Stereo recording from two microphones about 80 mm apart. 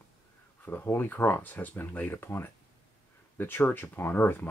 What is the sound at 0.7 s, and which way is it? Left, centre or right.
Speech, left.